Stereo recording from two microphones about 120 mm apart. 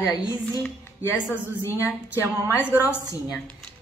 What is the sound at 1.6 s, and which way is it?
Speech, 20° left (ahead or behind).